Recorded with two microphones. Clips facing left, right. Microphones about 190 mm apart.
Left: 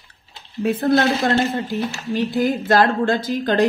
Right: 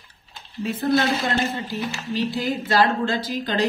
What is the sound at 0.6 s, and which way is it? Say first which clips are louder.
A woman's voice: left 4 dB; 55° left (ahead or behind).